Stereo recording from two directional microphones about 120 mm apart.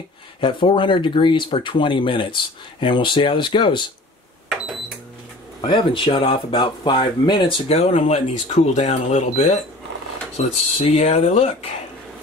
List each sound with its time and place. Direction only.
0.4 s speech: 45° left (ahead or behind)
5.6 s speech: 40° left (ahead or behind); by 11.5 s 75° left (ahead or behind)